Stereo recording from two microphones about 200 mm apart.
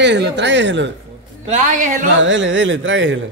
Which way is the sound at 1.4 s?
35° right (ahead or behind).